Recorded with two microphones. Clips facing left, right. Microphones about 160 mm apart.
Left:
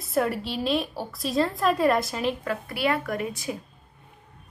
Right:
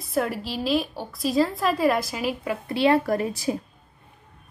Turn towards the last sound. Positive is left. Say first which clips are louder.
# right 5 dB
turn(degrees=-35)  # may be behind; listen again after turning